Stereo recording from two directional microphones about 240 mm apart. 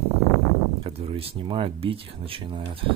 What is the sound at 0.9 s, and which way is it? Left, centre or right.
Speech, right.